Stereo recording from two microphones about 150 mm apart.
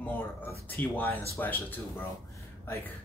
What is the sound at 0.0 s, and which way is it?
Speech, 10° left (ahead or behind).